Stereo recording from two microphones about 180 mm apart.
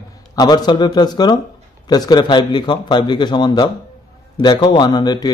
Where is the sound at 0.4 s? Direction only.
25° left (ahead or behind).